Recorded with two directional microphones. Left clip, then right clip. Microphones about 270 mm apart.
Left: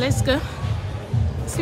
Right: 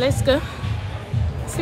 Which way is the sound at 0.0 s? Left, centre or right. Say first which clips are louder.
Right 3 dB; centre.